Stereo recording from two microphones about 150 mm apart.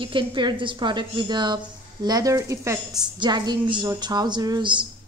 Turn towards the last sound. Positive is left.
turn(degrees=-30)  # may be behind; listen again after turning